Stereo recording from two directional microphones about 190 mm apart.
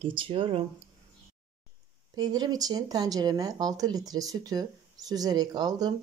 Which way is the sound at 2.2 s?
20° right (ahead or behind).